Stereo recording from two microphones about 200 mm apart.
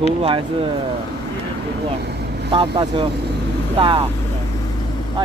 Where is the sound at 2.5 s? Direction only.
25° right (ahead or behind).